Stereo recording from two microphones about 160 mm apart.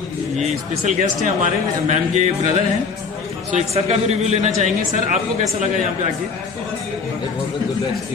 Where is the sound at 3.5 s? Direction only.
45° right (ahead or behind).